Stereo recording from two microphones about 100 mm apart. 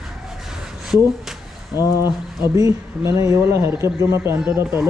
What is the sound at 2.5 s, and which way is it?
Speech, 30° right (ahead or behind).